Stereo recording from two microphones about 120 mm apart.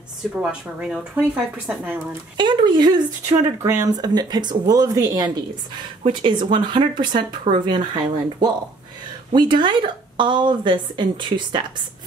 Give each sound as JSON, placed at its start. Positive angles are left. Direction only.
{"t": 0.4, "sound": "speech", "side_deg": -10}
{"t": 2.3, "sound": "speech", "side_deg": -40}
{"t": 6.0, "sound": "speech", "side_deg": -45}